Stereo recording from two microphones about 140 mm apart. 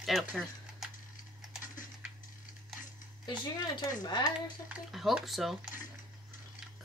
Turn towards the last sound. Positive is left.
turn(degrees=0)  # may be behind; listen again after turning